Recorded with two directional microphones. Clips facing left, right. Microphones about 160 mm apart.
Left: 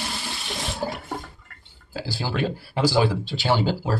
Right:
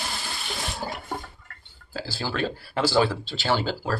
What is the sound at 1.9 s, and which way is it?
Speech, 15° left (ahead or behind).